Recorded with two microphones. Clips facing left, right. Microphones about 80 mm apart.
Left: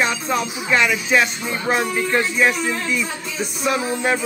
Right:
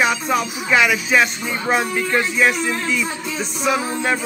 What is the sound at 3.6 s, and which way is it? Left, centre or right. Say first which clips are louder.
Speech: even; centre.